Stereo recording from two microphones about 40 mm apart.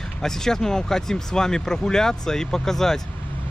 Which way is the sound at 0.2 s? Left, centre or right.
Centre.